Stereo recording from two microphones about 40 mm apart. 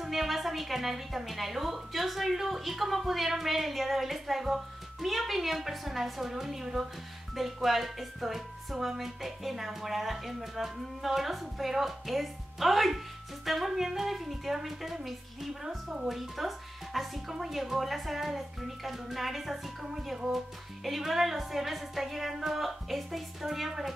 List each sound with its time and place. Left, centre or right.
0.0 s speech: centre